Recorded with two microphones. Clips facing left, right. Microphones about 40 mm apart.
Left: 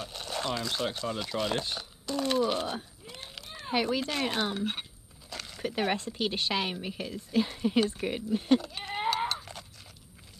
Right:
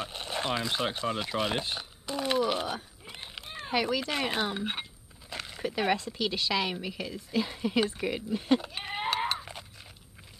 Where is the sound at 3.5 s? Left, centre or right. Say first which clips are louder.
Even; right.